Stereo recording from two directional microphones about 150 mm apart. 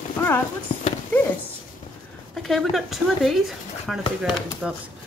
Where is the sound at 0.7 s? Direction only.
40° left (ahead or behind).